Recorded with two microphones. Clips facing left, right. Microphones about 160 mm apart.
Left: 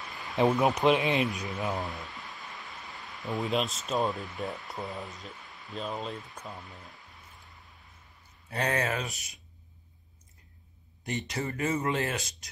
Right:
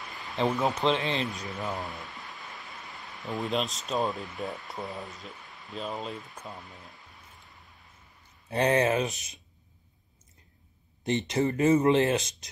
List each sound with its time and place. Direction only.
0.4 s speech: 15° left (ahead or behind)
1.8 s speech: centre (ahead or behind)
8.5 s speech: 20° right (ahead or behind)
11.1 s speech: 20° right (ahead or behind)